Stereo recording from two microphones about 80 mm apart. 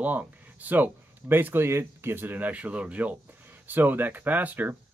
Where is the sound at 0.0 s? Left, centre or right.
Right.